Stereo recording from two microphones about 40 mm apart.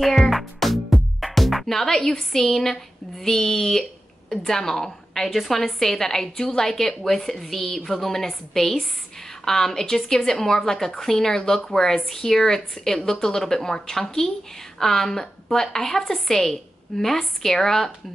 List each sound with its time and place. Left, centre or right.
0.0 s music: centre
1.2 s a woman's voice: centre